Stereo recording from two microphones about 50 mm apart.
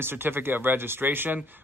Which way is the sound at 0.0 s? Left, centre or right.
Right.